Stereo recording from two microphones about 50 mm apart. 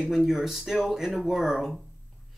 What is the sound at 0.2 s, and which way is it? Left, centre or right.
Speech, centre.